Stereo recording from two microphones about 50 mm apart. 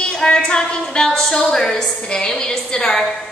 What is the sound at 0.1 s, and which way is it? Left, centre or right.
A woman's voice, centre.